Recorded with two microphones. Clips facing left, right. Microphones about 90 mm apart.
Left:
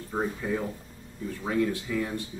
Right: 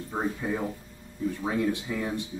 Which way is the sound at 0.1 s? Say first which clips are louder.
Left 1 dB; 10° right (ahead or behind).